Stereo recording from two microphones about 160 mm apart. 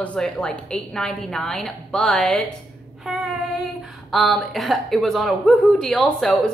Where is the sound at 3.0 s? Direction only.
5° right (ahead or behind).